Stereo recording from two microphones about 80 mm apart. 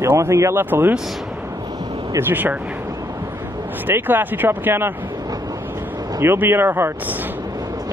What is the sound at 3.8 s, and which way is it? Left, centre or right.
Speech, right.